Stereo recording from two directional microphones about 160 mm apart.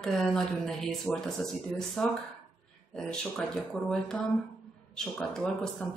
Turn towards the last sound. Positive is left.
turn(degrees=5)  # may be behind; listen again after turning